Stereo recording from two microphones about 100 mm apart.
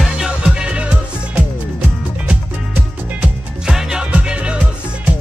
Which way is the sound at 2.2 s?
10° right (ahead or behind).